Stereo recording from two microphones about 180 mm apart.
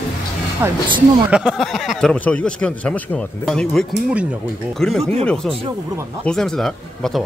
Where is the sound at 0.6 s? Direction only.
10° right (ahead or behind).